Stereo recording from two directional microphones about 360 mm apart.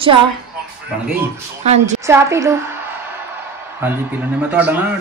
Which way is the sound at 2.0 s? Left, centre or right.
Centre.